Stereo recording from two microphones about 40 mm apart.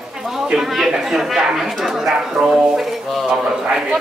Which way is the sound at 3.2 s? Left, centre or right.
Right.